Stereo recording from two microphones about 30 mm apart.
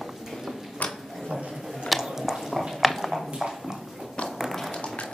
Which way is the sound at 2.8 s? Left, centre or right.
Centre.